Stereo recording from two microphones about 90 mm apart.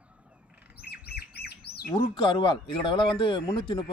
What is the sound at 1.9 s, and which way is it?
A man's voice, 65° left (ahead or behind).